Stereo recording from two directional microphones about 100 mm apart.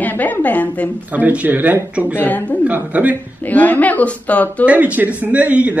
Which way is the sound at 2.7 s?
15° right (ahead or behind).